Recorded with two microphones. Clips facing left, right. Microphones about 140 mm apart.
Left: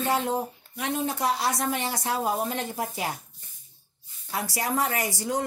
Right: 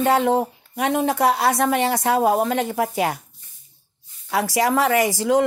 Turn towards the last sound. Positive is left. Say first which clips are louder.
# right 10 dB
turn(degrees=-90)